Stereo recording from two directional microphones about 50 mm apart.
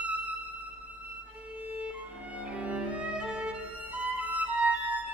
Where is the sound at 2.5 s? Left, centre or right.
Right.